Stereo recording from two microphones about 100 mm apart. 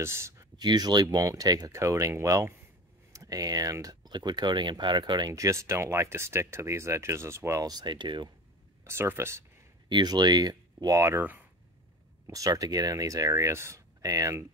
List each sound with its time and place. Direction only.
0.0 s speech: 25° right (ahead or behind)
0.6 s speech: 45° right (ahead or behind)
5.3 s speech: 30° right (ahead or behind); by 8.3 s 50° right (ahead or behind)
8.8 s speech: 25° right (ahead or behind)
9.8 s speech: 45° right (ahead or behind)
11.0 s speech: 30° right (ahead or behind)
12.3 s speech: 35° right (ahead or behind)